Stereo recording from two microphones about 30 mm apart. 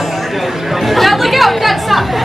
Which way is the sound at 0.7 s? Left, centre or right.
Centre.